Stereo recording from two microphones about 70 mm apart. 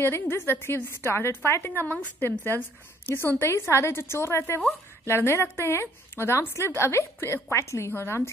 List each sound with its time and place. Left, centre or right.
0.0 s a woman's voice: left
1.7 s a woman's voice: left